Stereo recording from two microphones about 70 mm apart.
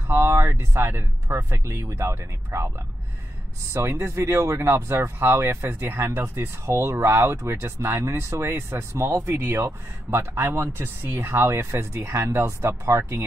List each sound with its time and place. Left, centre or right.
0.1 s speech: right
3.9 s speech: right